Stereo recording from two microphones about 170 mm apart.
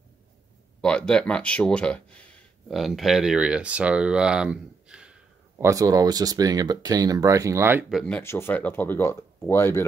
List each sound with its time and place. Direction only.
0.7 s speech: 5° left (ahead or behind)
5.7 s speech: 20° right (ahead or behind)
7.9 s speech: 5° left (ahead or behind)